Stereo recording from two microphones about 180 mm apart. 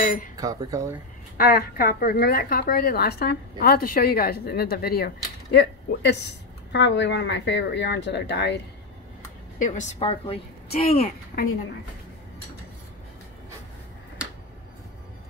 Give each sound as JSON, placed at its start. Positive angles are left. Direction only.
{"t": 0.4, "sound": "speech", "side_deg": -20}
{"t": 1.4, "sound": "a woman's voice", "side_deg": 55}
{"t": 9.6, "sound": "a woman's voice", "side_deg": 40}
{"t": 11.3, "sound": "a woman's voice", "side_deg": 45}